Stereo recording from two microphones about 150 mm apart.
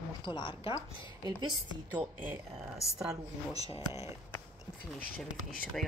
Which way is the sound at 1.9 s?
10° right (ahead or behind).